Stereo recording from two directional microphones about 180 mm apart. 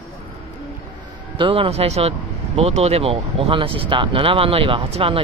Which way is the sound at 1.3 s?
30° right (ahead or behind).